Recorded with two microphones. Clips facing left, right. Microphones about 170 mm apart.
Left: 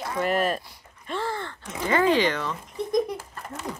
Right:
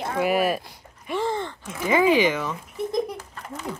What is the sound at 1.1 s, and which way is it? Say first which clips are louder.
Gasp: right 4 dB; 15° right (ahead or behind).